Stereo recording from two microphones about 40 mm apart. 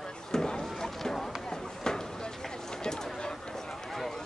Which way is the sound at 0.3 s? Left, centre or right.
Centre.